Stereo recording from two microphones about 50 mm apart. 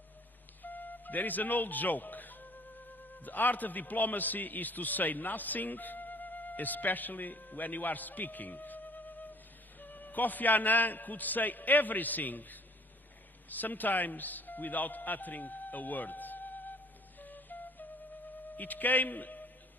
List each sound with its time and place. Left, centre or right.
0.6 s music: left
3.2 s a man's voice: left
13.5 s music: left
18.6 s a man's voice: left